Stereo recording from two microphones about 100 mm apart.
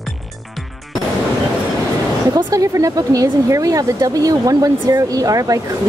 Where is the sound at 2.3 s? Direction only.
35° right (ahead or behind).